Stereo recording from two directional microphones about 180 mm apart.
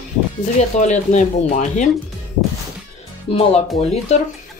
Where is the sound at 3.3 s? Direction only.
35° left (ahead or behind).